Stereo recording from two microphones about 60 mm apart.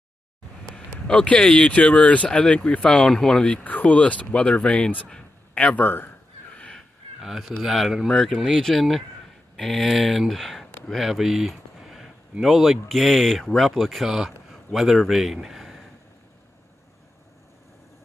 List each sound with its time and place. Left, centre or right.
0.7 s speech: centre; by 6.1 s left
6.5 s a sound: centre
7.2 s speech: centre
8.1 s speech: centre